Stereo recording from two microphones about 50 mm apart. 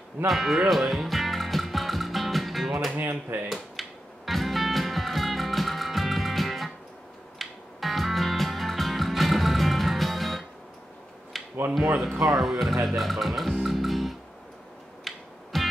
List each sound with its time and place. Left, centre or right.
0.3 s music: centre
3.0 s speech: right
3.8 s finger snapping: centre
4.3 s music: centre
11.3 s a sound: centre
12.3 s speech: centre
15.0 s music: centre